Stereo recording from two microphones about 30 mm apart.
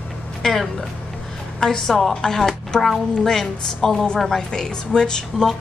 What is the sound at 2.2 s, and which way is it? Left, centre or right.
A woman's voice, centre.